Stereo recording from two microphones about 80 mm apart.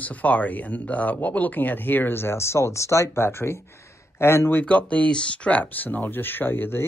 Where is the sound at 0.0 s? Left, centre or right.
Centre.